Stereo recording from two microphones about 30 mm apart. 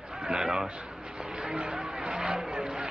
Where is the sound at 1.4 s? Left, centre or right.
Right.